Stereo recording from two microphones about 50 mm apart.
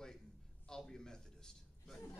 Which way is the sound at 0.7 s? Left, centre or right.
Centre.